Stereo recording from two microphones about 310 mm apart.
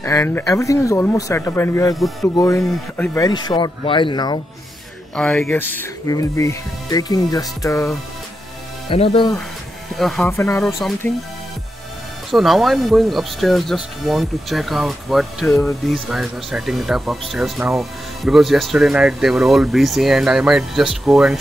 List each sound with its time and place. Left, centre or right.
0.0 s speech: centre
5.1 s speech: centre
9.9 s speech: centre
12.3 s speech: centre